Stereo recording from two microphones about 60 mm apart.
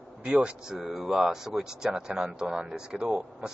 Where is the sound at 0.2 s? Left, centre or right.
Centre.